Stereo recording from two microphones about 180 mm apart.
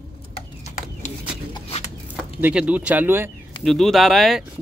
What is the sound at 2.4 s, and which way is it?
Speech, 10° right (ahead or behind).